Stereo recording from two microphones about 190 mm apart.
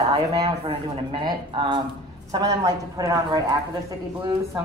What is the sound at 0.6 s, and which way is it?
A woman's voice, 30° right (ahead or behind).